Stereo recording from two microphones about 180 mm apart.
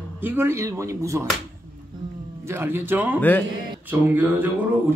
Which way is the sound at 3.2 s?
10° left (ahead or behind).